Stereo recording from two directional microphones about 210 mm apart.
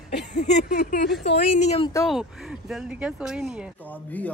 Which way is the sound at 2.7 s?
5° right (ahead or behind).